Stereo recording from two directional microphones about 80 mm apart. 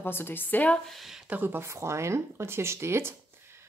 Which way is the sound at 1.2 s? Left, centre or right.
Right.